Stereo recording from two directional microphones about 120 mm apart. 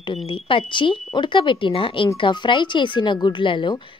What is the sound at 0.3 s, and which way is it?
A woman's voice, 45° left (ahead or behind).